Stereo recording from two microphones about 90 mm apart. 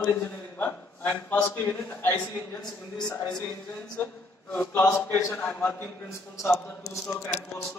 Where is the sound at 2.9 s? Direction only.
40° left (ahead or behind).